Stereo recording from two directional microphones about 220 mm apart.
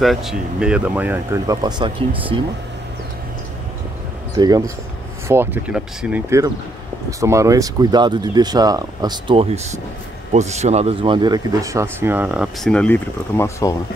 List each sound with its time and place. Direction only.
0.0 s speech: centre (ahead or behind); by 2.4 s 25° right (ahead or behind)
4.4 s speech: 15° right (ahead or behind); by 13.7 s 15° left (ahead or behind)